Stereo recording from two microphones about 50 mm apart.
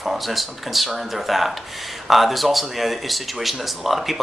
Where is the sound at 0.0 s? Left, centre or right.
Centre.